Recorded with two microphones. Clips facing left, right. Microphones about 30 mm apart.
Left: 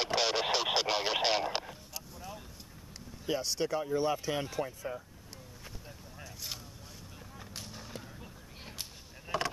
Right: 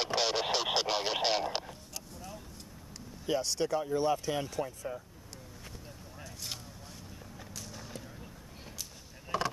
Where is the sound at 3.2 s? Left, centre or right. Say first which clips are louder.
Right 1 dB; centre.